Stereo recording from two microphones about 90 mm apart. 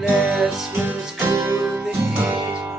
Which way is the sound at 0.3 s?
5° right (ahead or behind).